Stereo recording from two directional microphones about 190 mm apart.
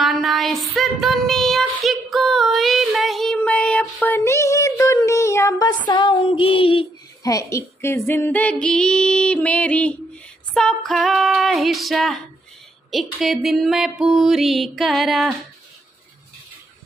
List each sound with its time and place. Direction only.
0.0 s child singing: centre (ahead or behind); by 5.8 s 20° left (ahead or behind)
5.9 s speech: 25° left (ahead or behind)
7.3 s speech: 15° left (ahead or behind)
10.5 s music: 5° left (ahead or behind)